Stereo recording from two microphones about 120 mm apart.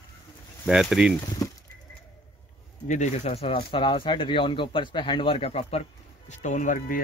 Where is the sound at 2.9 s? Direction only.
75° left (ahead or behind); by 6.8 s 90° left.